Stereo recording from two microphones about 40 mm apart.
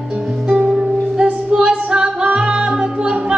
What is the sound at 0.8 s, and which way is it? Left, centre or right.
Music, right.